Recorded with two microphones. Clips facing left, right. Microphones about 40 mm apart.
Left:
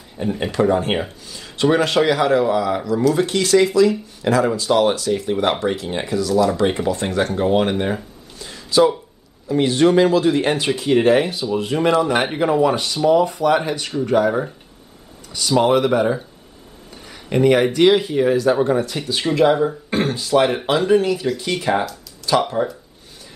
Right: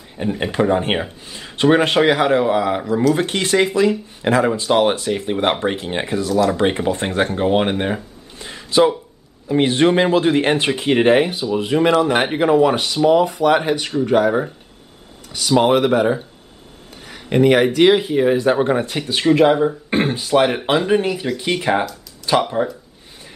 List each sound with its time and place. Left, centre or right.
0.2 s speech: right
8.4 s a sound: right
9.5 s speech: right
11.5 s speech: centre
17.1 s speech: centre
18.4 s speech: right; by 22.7 s centre